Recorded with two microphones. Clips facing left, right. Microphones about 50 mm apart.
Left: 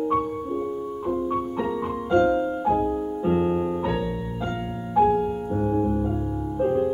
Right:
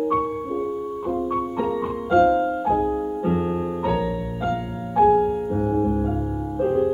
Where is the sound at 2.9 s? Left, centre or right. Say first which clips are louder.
Right 2 dB; centre.